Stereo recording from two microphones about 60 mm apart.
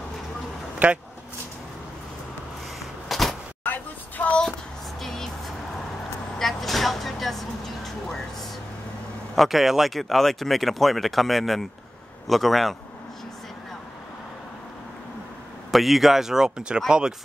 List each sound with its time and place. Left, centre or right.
0.8 s speech: right
3.1 s a sound: centre
3.6 s vehicle: left
5.0 s music: centre
6.3 s vehicle: centre
9.3 s speech: centre
15.7 s speech: centre